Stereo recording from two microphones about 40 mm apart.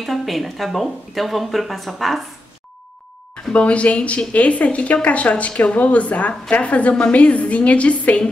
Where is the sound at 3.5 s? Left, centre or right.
Left.